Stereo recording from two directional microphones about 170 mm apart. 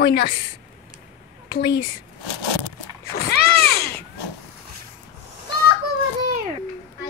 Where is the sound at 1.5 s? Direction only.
60° left (ahead or behind).